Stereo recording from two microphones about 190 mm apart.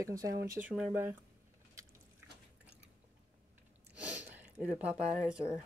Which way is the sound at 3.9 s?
10° right (ahead or behind).